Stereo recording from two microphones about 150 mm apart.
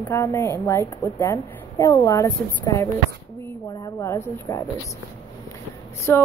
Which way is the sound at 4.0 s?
20° left (ahead or behind).